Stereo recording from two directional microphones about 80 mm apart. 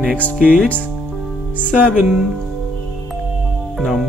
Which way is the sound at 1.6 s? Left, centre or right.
Centre.